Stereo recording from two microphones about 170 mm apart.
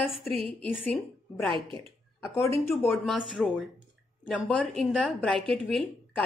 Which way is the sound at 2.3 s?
15° left (ahead or behind).